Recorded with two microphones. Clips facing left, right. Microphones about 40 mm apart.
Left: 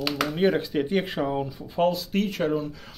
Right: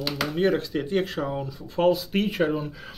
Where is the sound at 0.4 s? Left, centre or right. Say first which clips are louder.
Even; centre.